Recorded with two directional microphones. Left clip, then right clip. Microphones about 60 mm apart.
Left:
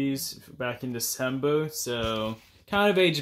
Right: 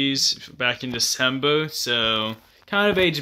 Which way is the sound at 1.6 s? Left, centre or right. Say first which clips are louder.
Right 8 dB; centre.